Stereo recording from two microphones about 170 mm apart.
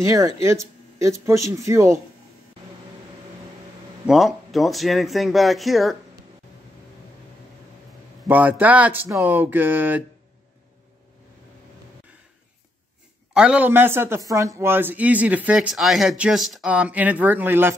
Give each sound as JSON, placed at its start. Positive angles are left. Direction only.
{"t": 0.0, "sound": "speech", "side_deg": -20}
{"t": 4.0, "sound": "speech", "side_deg": 0}
{"t": 8.3, "sound": "speech", "side_deg": -10}
{"t": 13.3, "sound": "speech", "side_deg": -5}